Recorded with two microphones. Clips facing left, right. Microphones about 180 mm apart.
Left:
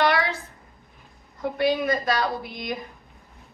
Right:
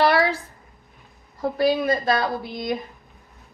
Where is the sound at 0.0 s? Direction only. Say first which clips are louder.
Right 4 dB; 30° right (ahead or behind).